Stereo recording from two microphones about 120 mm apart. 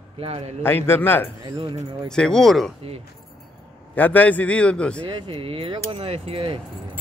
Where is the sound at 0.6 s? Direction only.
20° left (ahead or behind).